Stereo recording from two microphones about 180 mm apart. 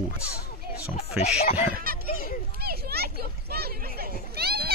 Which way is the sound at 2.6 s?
60° right (ahead or behind).